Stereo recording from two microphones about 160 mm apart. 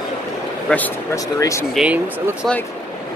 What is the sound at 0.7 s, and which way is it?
Speech, 10° left (ahead or behind).